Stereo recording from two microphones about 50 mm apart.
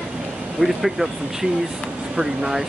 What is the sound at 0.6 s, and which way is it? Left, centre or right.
Speech, centre.